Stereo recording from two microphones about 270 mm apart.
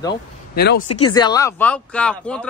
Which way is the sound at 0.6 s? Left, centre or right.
Left.